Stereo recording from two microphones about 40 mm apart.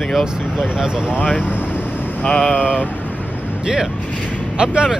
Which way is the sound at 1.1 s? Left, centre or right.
Left.